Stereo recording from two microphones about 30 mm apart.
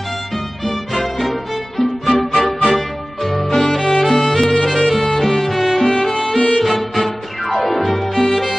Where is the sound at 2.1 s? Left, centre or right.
Centre.